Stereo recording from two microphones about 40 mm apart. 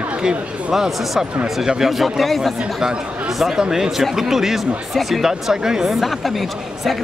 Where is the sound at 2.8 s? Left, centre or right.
Centre.